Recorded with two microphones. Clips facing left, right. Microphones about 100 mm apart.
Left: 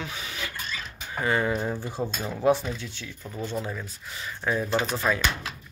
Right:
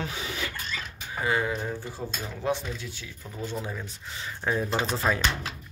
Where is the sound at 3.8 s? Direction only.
25° right (ahead or behind).